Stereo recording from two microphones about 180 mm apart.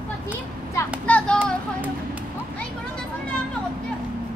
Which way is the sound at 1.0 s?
5° left (ahead or behind).